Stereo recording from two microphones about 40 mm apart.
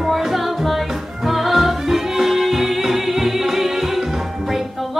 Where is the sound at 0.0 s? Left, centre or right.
Centre.